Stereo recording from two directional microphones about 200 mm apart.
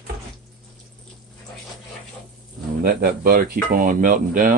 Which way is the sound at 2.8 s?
45° right (ahead or behind).